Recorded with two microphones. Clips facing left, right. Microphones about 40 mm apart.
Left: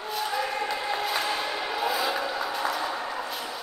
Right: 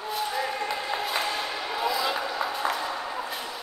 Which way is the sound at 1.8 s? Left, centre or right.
Left.